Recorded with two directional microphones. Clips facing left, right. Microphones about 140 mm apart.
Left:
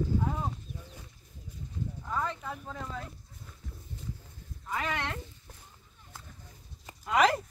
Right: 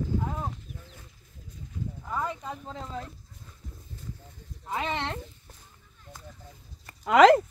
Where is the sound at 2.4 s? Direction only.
25° right (ahead or behind).